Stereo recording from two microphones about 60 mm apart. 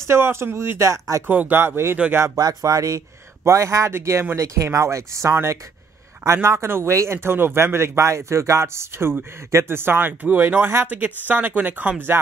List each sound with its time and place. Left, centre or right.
0.0 s speech: right
1.2 s speech: right
1.6 s speech: right
2.3 s speech: right
3.4 s speech: right
3.9 s speech: right
4.4 s speech: right
5.3 s speech: right